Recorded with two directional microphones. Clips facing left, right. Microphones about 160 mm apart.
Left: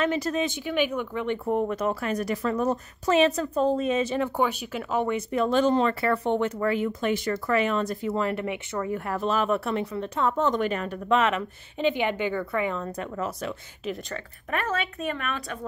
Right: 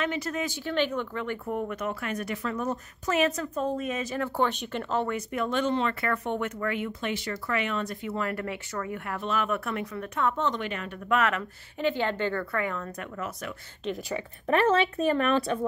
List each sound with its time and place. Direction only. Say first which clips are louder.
0.0 s speech: left 5 dB; 40° left (ahead or behind)
0.4 s speech: left 2 dB; 15° left (ahead or behind)
4.4 s speech: left 1 dB; 5° left (ahead or behind)
5.0 s speech: left 4 dB; 25° left (ahead or behind)
8.3 s speech: left 4 dB; 20° left (ahead or behind)
8.9 s speech: left 4 dB; 35° left (ahead or behind)
11.1 s speech: left 3 dB; 25° left (ahead or behind)
14.7 s speech: right 6 dB; 30° right (ahead or behind)